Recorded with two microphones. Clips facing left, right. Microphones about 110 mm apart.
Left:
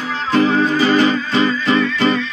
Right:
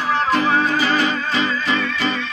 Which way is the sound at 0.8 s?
35° left (ahead or behind).